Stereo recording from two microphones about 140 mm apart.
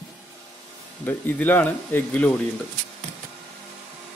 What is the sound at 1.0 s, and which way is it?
Speech, 15° left (ahead or behind).